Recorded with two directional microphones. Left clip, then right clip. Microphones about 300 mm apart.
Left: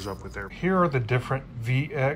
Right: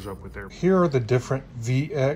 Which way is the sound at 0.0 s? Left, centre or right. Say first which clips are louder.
Left 2 dB; centre.